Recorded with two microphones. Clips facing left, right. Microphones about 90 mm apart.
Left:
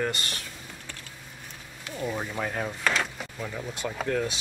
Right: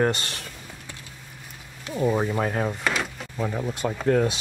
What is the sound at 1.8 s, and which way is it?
Speech, 25° right (ahead or behind).